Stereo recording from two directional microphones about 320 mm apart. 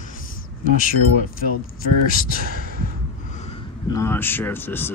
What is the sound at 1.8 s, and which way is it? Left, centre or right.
Speech, left.